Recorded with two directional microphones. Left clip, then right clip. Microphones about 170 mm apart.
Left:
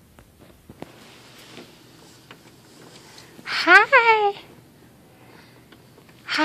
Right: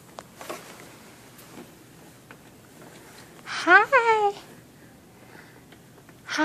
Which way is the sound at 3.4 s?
5° left (ahead or behind).